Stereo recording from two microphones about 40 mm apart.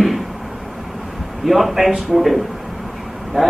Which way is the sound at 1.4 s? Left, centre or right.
Centre.